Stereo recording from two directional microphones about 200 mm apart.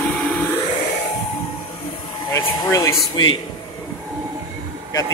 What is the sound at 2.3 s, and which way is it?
Speech, 15° left (ahead or behind).